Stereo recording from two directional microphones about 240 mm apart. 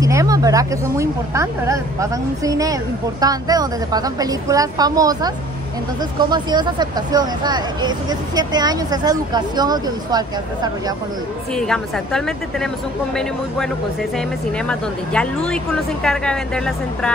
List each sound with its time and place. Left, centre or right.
0.0 s speech: centre
11.5 s speech: centre
14.7 s speech: centre